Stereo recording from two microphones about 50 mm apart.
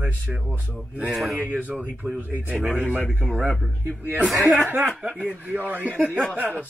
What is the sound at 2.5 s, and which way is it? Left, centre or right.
Speech, right.